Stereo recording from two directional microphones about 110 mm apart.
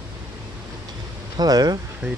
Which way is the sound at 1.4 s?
35° right (ahead or behind).